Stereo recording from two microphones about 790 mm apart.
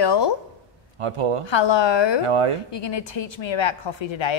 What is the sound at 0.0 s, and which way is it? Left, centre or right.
Speech, left.